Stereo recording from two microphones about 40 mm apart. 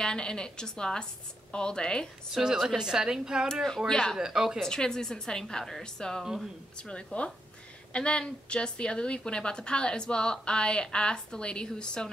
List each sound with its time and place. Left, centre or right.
0.0 s a woman's voice: centre
2.3 s a woman's voice: centre
3.6 s speech: centre
4.2 s a woman's voice: centre
4.6 s speech: centre
6.2 s a woman's voice: centre
6.8 s a woman's voice: left